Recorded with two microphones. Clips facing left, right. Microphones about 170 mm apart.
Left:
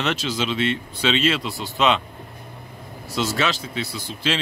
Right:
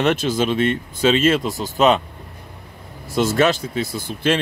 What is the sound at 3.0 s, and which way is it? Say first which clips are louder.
Speech: right 7 dB; 55° right (ahead or behind).